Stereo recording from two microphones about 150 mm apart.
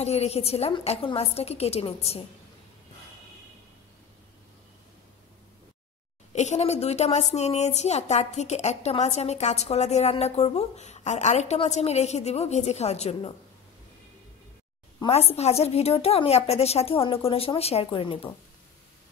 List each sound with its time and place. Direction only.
0.0 s a woman's voice: 45° left (ahead or behind)
6.3 s a woman's voice: 50° left (ahead or behind)
15.0 s a woman's voice: 45° left (ahead or behind)